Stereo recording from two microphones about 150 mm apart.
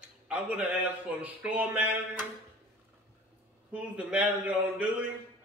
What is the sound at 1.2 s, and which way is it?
Speech, 10° right (ahead or behind).